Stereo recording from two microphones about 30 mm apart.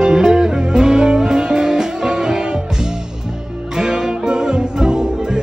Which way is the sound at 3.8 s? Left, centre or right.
Right.